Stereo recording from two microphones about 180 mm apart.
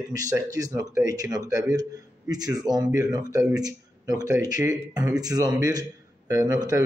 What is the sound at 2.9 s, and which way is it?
A man's voice, 20° right (ahead or behind).